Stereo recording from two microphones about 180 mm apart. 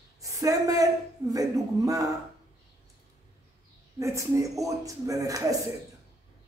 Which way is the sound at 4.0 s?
15° right (ahead or behind).